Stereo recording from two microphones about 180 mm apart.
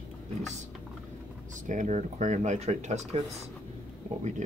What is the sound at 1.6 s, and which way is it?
Speech, 45° right (ahead or behind).